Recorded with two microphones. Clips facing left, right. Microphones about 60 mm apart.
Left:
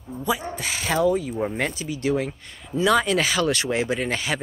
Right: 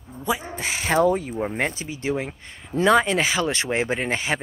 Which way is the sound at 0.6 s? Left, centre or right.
Right.